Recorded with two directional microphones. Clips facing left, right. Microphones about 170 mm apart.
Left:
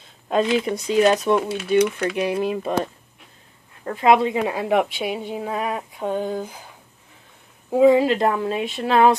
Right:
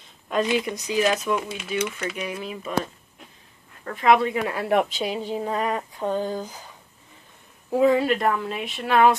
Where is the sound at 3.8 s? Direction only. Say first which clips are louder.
Left 2 dB; 25° left (ahead or behind).